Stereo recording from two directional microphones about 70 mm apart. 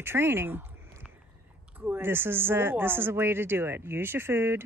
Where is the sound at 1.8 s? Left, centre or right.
Right.